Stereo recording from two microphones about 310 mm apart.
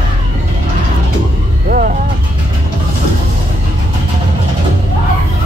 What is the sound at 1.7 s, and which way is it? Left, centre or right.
Music, right.